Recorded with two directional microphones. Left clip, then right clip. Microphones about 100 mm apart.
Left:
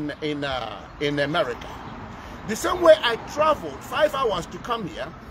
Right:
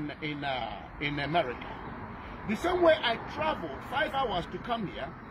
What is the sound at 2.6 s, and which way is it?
Speech, 60° left (ahead or behind).